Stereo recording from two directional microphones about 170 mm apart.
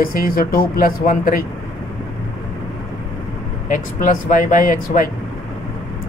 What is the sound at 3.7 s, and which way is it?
Speech, 50° left (ahead or behind).